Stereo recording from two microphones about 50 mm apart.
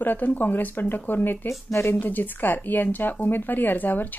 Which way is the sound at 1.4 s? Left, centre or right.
Left.